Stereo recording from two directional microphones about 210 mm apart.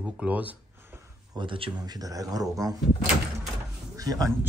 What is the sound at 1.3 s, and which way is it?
Speech, 25° right (ahead or behind).